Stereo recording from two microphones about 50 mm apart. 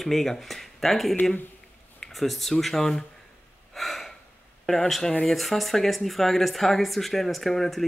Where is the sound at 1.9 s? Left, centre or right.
Centre.